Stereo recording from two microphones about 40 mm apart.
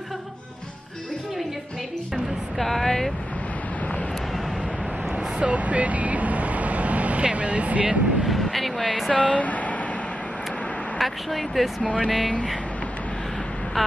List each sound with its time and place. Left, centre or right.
2.6 s a sound: centre
5.1 s vehicle: right
7.2 s speech: right
8.3 s a sound: centre
9.1 s speech: left
11.0 s speech: centre
11.8 s speech: left
13.8 s vehicle: centre